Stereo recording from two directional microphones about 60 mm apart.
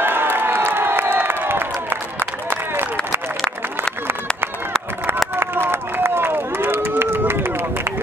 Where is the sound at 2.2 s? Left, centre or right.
Right.